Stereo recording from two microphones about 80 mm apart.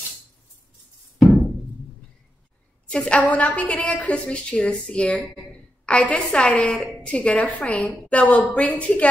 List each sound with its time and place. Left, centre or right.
2.9 s a woman's voice: centre